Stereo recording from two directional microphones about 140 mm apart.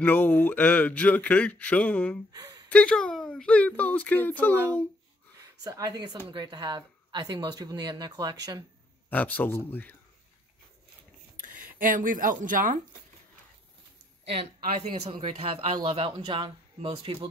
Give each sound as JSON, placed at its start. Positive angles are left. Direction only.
{"t": 0.0, "sound": "speech", "side_deg": 15}
{"t": 2.3, "sound": "a sound", "side_deg": -25}
{"t": 2.7, "sound": "speech", "side_deg": 5}
{"t": 5.6, "sound": "speech", "side_deg": -25}
{"t": 9.1, "sound": "speech", "side_deg": 10}
{"t": 11.3, "sound": "speech", "side_deg": -75}
{"t": 15.0, "sound": "a man's voice", "side_deg": -35}